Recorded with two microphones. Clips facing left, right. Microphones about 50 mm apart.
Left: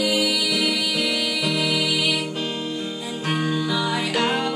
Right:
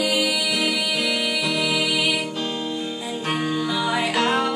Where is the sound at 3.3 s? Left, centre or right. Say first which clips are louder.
Left 1 dB; centre.